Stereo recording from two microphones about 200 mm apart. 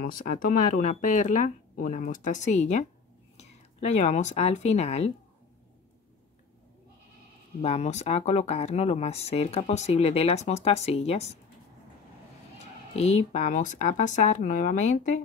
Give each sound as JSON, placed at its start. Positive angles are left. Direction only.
{"t": 0.0, "sound": "speech", "side_deg": 45}
{"t": 7.6, "sound": "speech", "side_deg": 35}
{"t": 12.9, "sound": "speech", "side_deg": 30}